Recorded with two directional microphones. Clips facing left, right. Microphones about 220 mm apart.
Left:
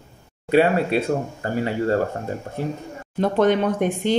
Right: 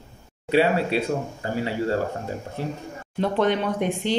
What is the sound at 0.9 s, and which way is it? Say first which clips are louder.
Speech: left 3 dB; 50° left (ahead or behind).